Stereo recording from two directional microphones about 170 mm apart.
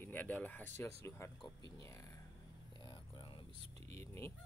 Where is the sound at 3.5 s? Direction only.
35° right (ahead or behind).